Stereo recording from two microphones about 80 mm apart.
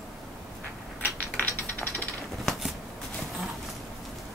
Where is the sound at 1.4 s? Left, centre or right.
Centre.